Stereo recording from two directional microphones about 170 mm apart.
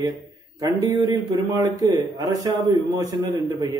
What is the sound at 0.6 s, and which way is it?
A man's voice, 25° right (ahead or behind).